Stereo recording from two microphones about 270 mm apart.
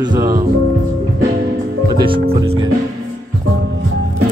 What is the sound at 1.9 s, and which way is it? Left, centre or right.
Music, centre.